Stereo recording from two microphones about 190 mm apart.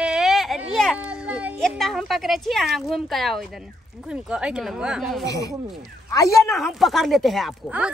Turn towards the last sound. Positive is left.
turn(degrees=-5)  # may be behind; listen again after turning